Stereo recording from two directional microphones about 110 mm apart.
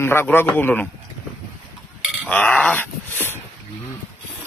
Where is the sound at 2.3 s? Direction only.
10° left (ahead or behind).